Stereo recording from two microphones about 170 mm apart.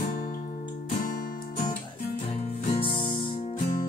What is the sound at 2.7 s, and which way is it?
Music, 30° left (ahead or behind).